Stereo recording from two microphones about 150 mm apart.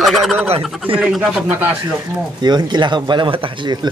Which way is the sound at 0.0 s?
Centre (ahead or behind).